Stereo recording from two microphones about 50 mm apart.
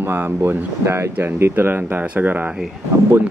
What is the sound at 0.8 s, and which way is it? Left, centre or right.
Speech, right.